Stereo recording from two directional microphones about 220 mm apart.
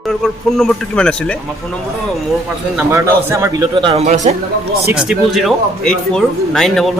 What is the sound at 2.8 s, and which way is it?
Speech, 10° right (ahead or behind).